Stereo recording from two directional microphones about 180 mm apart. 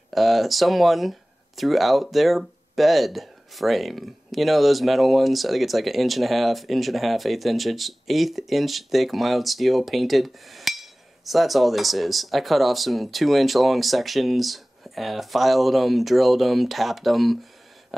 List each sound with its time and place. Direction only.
0.1 s speech: centre (ahead or behind)